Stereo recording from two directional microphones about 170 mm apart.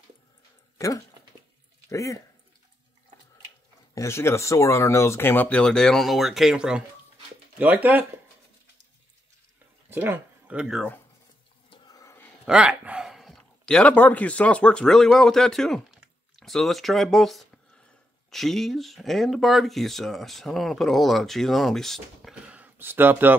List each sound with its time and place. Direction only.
0.7 s speech: 20° left (ahead or behind)
3.9 s speech: 15° left (ahead or behind); by 8.1 s 10° right (ahead or behind)
9.8 s speech: 10° right (ahead or behind)
11.7 s a sound: 25° left (ahead or behind)
12.4 s speech: 5° right (ahead or behind)